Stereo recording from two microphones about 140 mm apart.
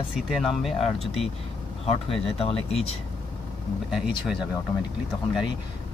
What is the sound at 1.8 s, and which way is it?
Speech, 45° left (ahead or behind).